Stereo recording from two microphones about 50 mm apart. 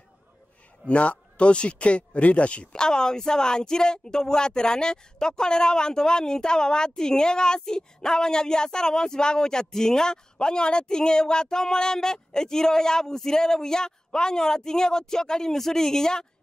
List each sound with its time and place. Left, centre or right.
0.8 s speech: left
2.7 s speech: centre